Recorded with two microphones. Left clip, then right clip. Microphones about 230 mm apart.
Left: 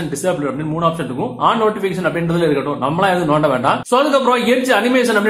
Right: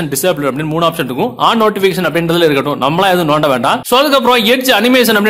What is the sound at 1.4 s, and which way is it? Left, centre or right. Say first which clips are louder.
A man's voice: right 4 dB; right.